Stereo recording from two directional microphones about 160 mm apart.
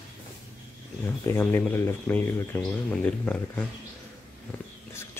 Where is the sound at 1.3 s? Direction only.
15° left (ahead or behind).